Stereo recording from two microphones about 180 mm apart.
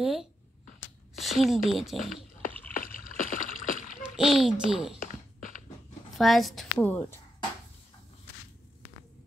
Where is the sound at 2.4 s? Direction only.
50° left (ahead or behind).